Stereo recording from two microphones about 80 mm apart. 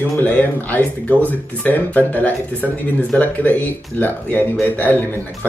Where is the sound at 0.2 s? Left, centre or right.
Centre.